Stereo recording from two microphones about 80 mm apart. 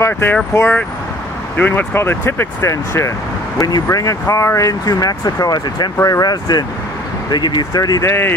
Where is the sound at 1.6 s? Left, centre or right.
Left.